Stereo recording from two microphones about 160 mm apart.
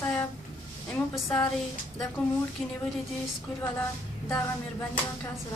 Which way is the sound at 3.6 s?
10° left (ahead or behind).